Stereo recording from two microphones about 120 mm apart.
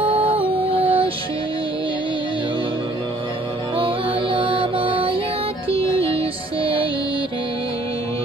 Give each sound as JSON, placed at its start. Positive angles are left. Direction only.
{"t": 0.0, "sound": "music", "side_deg": -50}
{"t": 4.3, "sound": "music", "side_deg": -45}